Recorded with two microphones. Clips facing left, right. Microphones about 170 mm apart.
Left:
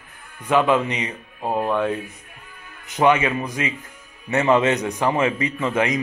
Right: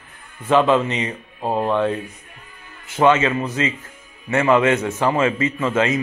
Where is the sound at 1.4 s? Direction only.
20° right (ahead or behind).